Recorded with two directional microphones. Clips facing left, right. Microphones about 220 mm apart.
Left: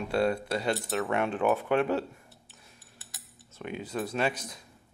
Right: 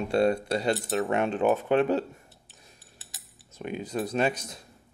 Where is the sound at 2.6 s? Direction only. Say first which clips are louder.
Right 1 dB; 20° right (ahead or behind).